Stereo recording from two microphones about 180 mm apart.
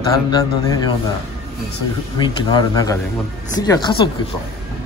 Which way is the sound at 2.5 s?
20° left (ahead or behind).